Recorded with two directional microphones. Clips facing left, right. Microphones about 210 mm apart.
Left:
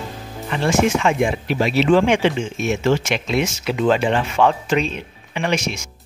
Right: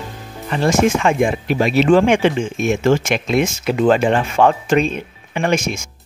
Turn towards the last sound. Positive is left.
turn(degrees=-50)  # may be behind; listen again after turning